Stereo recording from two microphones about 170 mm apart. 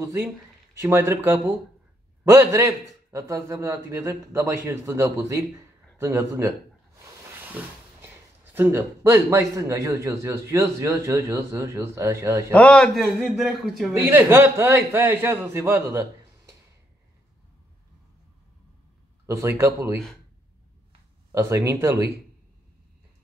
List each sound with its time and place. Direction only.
0.0 s a man's voice: 15° right (ahead or behind)
7.6 s a man's voice: 10° right (ahead or behind)
12.5 s a man's voice: 5° left (ahead or behind)
13.9 s a man's voice: 15° right (ahead or behind)
19.2 s a man's voice: 15° right (ahead or behind)
21.3 s a man's voice: 15° right (ahead or behind)